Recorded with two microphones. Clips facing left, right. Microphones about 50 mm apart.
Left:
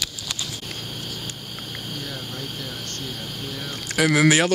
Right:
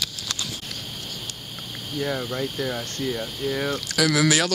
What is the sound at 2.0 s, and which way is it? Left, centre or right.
Speech, right.